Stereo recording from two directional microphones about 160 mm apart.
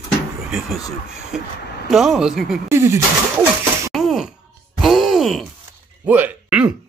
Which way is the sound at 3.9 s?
5° right (ahead or behind).